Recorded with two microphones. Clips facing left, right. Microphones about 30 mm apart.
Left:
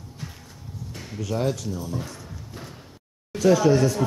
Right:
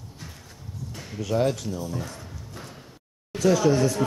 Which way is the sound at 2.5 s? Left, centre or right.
Centre.